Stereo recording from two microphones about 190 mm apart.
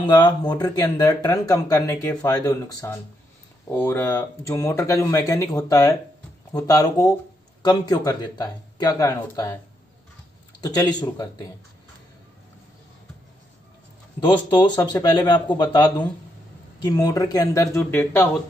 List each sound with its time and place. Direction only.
0.0 s speech: 20° left (ahead or behind)
10.6 s speech: 20° left (ahead or behind)
14.5 s speech: 25° left (ahead or behind)